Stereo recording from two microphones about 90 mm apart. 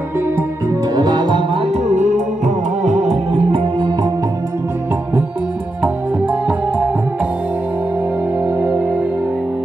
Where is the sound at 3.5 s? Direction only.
75° right (ahead or behind); by 4.1 s 60° right (ahead or behind).